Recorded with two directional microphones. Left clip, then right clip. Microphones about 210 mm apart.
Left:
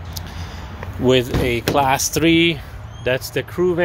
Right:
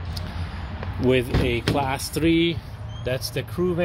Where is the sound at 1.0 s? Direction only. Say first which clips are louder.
Left 5 dB; 30° left (ahead or behind).